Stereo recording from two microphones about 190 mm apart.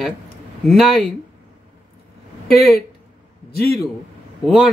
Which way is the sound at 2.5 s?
55° left (ahead or behind).